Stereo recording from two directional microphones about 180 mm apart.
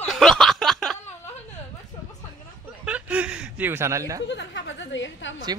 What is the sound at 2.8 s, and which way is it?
Speech, 5° right (ahead or behind).